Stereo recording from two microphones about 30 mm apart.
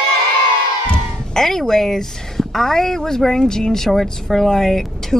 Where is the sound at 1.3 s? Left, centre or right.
Centre.